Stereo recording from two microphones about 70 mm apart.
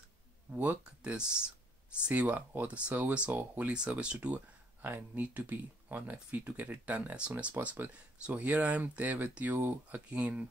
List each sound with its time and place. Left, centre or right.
0.5 s speech: right
1.1 s speech: centre
4.8 s speech: right